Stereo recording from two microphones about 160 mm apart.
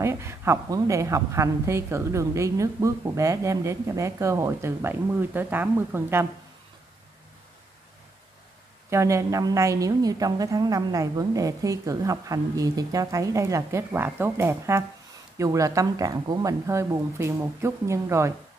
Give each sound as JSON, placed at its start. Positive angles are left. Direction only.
{"t": 0.0, "sound": "a woman's voice", "side_deg": -15}
{"t": 8.9, "sound": "a woman's voice", "side_deg": -20}